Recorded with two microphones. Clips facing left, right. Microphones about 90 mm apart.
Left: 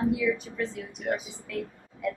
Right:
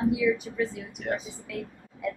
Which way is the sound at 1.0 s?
10° left (ahead or behind).